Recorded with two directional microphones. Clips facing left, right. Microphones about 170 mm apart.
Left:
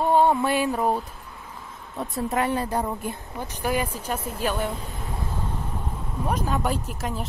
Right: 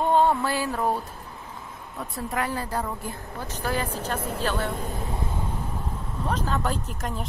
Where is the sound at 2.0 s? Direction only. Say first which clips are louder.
Left 4 dB; 25° left (ahead or behind).